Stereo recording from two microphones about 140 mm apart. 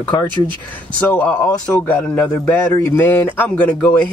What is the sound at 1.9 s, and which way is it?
A man's voice, 10° left (ahead or behind).